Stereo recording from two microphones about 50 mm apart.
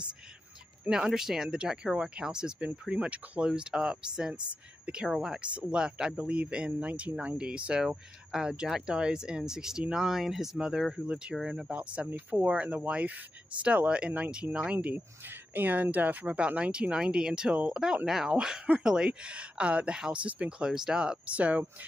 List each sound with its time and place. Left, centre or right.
0.8 s speech: centre
15.5 s speech: right
16.3 s speech: right